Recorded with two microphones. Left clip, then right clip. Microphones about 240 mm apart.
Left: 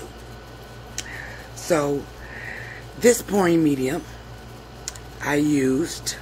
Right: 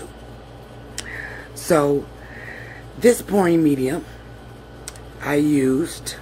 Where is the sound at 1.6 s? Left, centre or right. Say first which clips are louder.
Right 4 dB; right.